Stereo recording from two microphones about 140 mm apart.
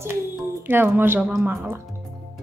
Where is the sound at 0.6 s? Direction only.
15° right (ahead or behind).